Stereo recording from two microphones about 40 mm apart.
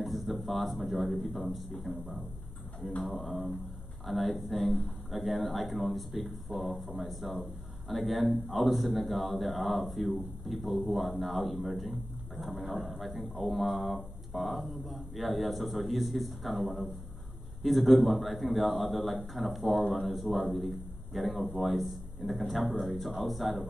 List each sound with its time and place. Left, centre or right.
0.0 s speech: centre
17.6 s speech: centre